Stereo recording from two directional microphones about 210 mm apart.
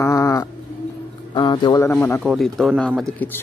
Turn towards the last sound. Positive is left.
turn(degrees=5)  # may be behind; listen again after turning